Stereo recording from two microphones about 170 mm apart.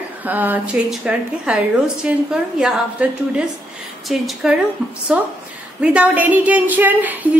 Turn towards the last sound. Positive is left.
turn(degrees=-10)  # may be behind; listen again after turning